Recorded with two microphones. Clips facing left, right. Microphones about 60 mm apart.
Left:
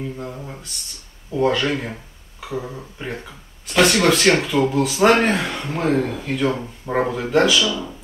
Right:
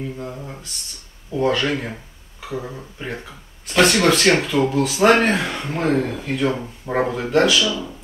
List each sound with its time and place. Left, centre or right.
0.0 s speech: centre
5.5 s speech: centre
7.6 s speech: centre